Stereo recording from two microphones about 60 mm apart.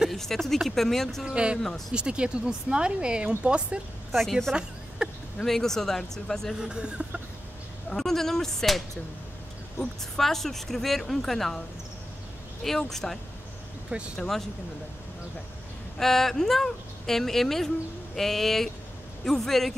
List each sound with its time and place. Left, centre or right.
0.1 s speech: centre
1.2 s speech: centre
4.1 s speech: centre
4.6 s a sound: centre
5.4 s speech: centre
6.6 s speech: centre
7.9 s speech: centre
12.6 s speech: centre
16.0 s speech: centre